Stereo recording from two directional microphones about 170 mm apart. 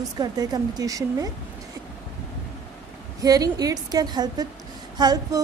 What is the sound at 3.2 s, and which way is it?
Speech, 20° right (ahead or behind).